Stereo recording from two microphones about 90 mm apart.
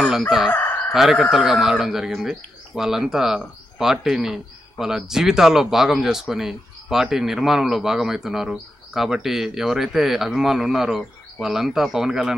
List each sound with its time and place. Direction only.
0.5 s chicken: 25° left (ahead or behind)
0.9 s speech: 5° right (ahead or behind)